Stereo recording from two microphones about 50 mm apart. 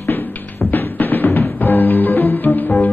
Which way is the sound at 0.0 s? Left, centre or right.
Left.